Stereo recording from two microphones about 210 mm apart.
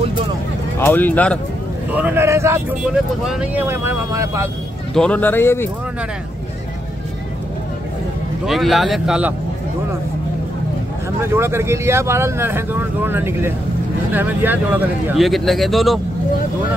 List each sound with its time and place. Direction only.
0.7 s speech: 10° left (ahead or behind)
1.9 s a man's voice: 10° right (ahead or behind)
4.9 s speech: 5° left (ahead or behind)
8.5 s speech: centre (ahead or behind)
11.2 s a man's voice: 10° right (ahead or behind)